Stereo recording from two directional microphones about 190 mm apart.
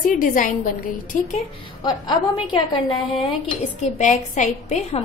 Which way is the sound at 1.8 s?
25° left (ahead or behind).